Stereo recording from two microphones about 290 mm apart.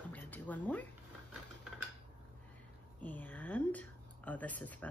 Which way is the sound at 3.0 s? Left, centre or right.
Centre.